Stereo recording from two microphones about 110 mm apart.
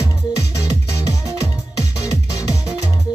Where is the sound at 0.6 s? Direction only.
30° left (ahead or behind).